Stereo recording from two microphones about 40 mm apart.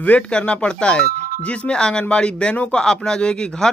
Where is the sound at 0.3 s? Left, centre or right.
Left.